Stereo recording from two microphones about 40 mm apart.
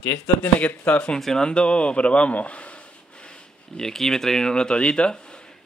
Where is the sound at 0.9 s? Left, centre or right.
Left.